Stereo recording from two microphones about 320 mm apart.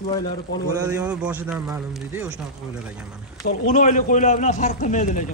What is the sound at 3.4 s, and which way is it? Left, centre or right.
A man's voice, left.